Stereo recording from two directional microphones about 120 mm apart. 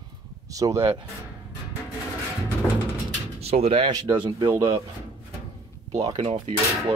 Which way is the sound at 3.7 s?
40° right (ahead or behind).